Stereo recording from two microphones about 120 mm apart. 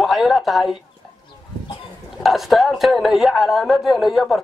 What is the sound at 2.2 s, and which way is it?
Speech, centre (ahead or behind).